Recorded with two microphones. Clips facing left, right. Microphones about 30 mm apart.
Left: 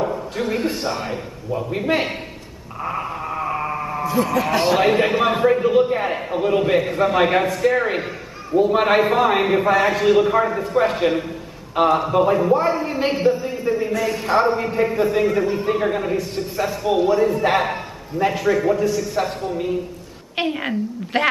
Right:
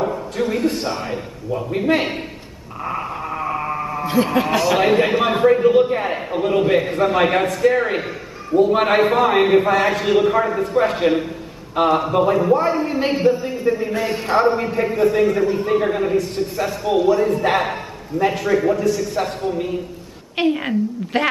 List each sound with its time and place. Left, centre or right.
0.7 s a man's voice: centre
2.8 s a sound: centre
4.0 s speech: right
4.7 s a man's voice: centre
13.9 s a man's voice: right
14.2 s a man's voice: centre